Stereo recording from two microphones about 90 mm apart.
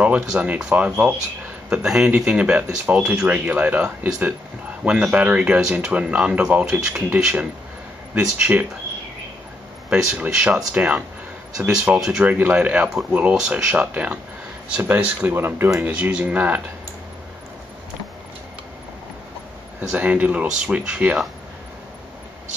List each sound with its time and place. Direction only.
0.0 s speech: 15° right (ahead or behind)
9.9 s speech: 10° right (ahead or behind)
15.9 s speech: 15° right (ahead or behind)
19.9 s speech: 15° right (ahead or behind)